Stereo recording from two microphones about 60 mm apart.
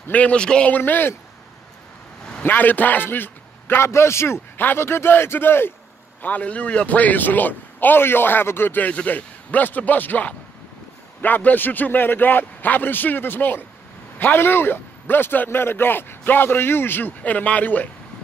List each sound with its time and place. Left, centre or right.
0.1 s a man's voice: left
0.7 s a man's voice: left
2.4 s a man's voice: left
6.2 s a man's voice: left
17.2 s a man's voice: left